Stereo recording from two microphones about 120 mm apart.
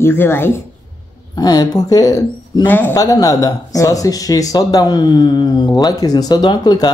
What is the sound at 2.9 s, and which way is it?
Speech, 30° left (ahead or behind).